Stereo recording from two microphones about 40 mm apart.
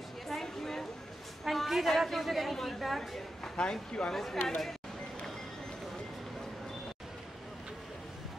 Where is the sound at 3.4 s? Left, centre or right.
Left.